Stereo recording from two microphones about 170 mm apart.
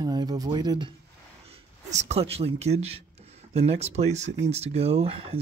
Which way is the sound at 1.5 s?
40° right (ahead or behind).